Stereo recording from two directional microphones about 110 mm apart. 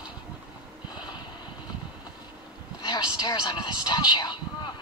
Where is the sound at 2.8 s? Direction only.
40° left (ahead or behind).